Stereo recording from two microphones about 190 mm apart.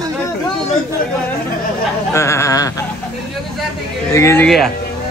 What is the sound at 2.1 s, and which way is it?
Speech, 15° left (ahead or behind).